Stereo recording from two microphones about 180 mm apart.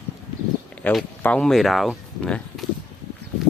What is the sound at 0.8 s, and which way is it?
Speech, 10° left (ahead or behind).